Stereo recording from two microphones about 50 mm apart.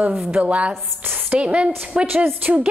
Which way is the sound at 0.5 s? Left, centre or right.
Right.